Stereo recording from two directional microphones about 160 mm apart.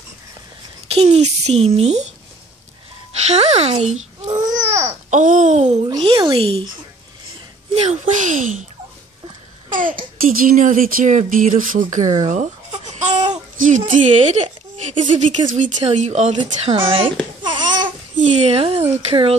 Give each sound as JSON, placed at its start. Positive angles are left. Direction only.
{"t": 0.8, "sound": "a child's voice", "side_deg": -40}
{"t": 3.3, "sound": "speech", "side_deg": -45}
{"t": 3.8, "sound": "babbling", "side_deg": -45}
{"t": 4.3, "sound": "babbling", "side_deg": -25}
{"t": 5.1, "sound": "speech", "side_deg": -50}
{"t": 6.0, "sound": "speech", "side_deg": -30}
{"t": 7.7, "sound": "speech", "side_deg": -45}
{"t": 9.8, "sound": "speech", "side_deg": -60}
{"t": 12.0, "sound": "speech", "side_deg": -25}
{"t": 12.3, "sound": "babbling", "side_deg": -45}
{"t": 15.1, "sound": "speech", "side_deg": -50}
{"t": 16.3, "sound": "speech", "side_deg": -35}
{"t": 17.4, "sound": "babbling", "side_deg": -30}
{"t": 18.3, "sound": "speech", "side_deg": -40}